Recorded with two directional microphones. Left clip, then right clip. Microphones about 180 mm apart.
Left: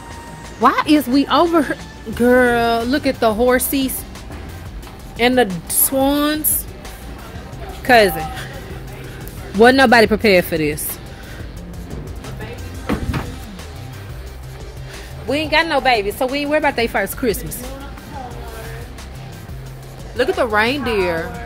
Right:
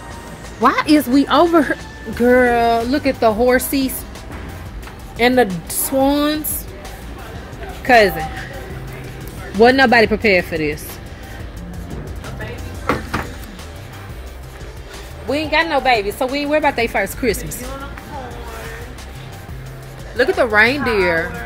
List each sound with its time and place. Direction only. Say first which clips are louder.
0.6 s speech: even; 10° left (ahead or behind)
2.1 s speech: even; 20° left (ahead or behind)
5.1 s speech: right 1 dB; 10° left (ahead or behind)
7.8 s speech: even; 20° left (ahead or behind)
9.6 s speech: left 1 dB; 30° left (ahead or behind)
15.2 s speech: even; 20° left (ahead or behind)
20.3 s speech: right 5 dB; 5° left (ahead or behind)